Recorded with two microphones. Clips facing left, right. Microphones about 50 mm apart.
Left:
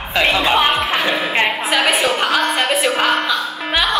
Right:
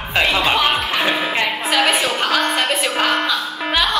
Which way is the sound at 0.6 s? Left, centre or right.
Left.